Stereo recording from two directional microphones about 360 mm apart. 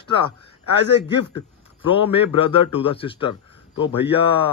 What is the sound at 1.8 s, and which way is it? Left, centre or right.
Speech, left.